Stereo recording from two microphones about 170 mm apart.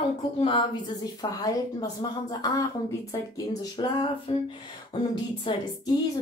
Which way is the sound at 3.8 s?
25° left (ahead or behind).